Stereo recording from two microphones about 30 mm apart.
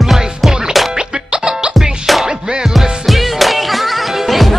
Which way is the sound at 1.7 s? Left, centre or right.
Centre.